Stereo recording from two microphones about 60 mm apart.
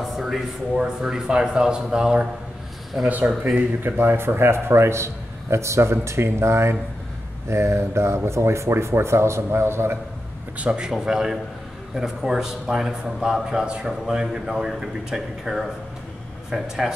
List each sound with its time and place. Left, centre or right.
0.0 s a man's voice: centre
3.8 s a man's voice: right
10.6 s a man's voice: centre